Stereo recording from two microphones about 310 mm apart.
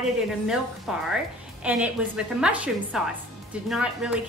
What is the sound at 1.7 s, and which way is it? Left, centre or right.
A woman's voice, centre.